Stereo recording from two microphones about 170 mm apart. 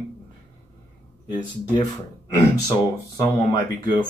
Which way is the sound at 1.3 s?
25° left (ahead or behind).